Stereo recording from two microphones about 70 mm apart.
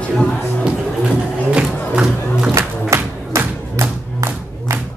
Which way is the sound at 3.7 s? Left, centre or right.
Right.